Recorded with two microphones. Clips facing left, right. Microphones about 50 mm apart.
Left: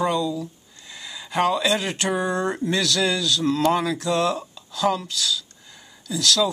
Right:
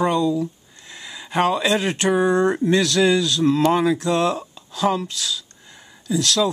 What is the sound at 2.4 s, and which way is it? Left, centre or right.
Speech, right.